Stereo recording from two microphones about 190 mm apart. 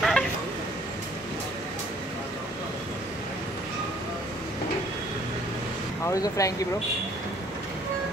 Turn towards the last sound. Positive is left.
turn(degrees=20)  # may be behind; listen again after turning